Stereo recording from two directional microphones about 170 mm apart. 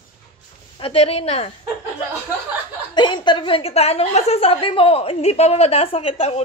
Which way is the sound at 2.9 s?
25° left (ahead or behind).